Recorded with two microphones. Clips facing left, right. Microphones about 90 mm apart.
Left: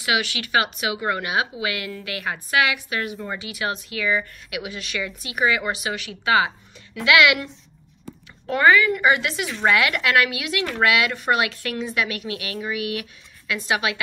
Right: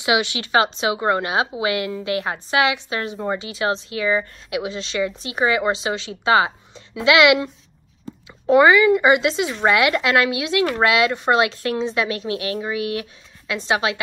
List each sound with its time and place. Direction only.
0.0 s speech: 20° right (ahead or behind)
8.5 s speech: 20° right (ahead or behind)